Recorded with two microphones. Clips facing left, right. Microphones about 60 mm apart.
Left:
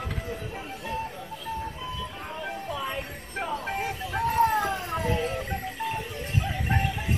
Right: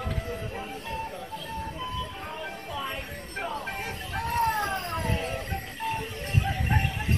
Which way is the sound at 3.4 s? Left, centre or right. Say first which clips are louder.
Left 3 dB; centre.